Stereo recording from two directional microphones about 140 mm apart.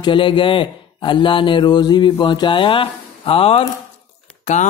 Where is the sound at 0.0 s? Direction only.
35° left (ahead or behind).